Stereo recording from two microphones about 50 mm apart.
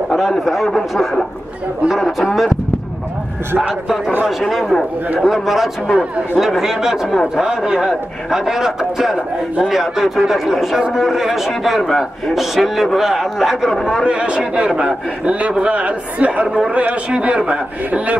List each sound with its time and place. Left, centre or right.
0.1 s a man's voice: centre
2.1 s a man's voice: centre
4.4 s a man's voice: centre
5.9 s a man's voice: centre
14.0 s a man's voice: right